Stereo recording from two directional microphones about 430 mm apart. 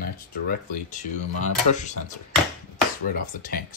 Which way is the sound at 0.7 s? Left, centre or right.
Centre.